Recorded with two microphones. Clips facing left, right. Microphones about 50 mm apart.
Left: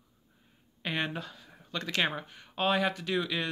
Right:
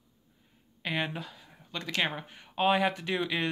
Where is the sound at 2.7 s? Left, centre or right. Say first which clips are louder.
Right 1 dB; right.